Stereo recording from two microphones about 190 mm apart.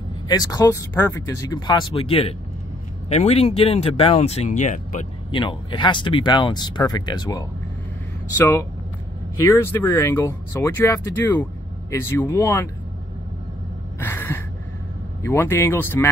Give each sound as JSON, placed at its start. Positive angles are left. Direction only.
{"t": 0.3, "sound": "speech", "side_deg": 20}
{"t": 5.3, "sound": "speech", "side_deg": 25}
{"t": 9.5, "sound": "speech", "side_deg": 15}
{"t": 13.9, "sound": "a sound", "side_deg": 10}
{"t": 15.2, "sound": "speech", "side_deg": 10}